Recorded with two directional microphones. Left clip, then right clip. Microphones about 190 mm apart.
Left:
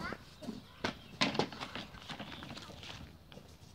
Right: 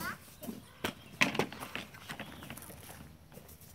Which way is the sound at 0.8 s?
40° left (ahead or behind).